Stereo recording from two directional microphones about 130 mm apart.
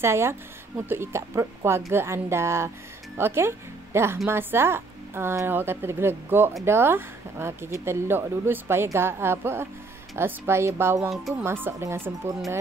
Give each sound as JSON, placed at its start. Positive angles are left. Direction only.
{"t": 0.0, "sound": "a woman's voice", "side_deg": -20}